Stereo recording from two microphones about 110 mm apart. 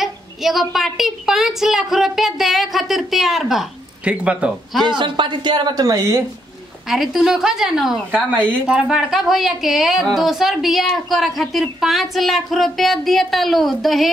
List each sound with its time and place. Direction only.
0.0 s speech: centre (ahead or behind)
4.8 s speech: 45° right (ahead or behind); by 6.2 s 30° right (ahead or behind)
6.9 s speech: centre (ahead or behind)